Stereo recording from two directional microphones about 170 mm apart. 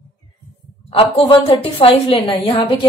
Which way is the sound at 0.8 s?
35° left (ahead or behind).